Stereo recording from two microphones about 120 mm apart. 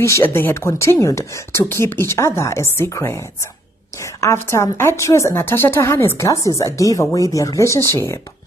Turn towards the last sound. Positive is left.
turn(degrees=25)  # may be behind; listen again after turning